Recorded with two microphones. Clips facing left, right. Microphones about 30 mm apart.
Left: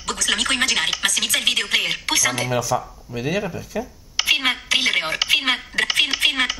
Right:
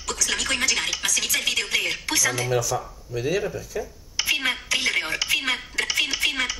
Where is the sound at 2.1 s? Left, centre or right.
Left.